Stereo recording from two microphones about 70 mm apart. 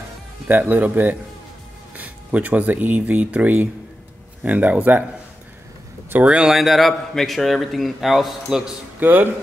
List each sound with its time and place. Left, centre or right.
0.5 s speech: right
6.2 s speech: centre
6.5 s a man's voice: centre
9.0 s speech: right